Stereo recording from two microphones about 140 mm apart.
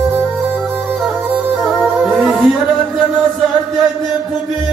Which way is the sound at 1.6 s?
Centre (ahead or behind).